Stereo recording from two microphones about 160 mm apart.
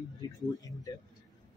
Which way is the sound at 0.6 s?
20° left (ahead or behind).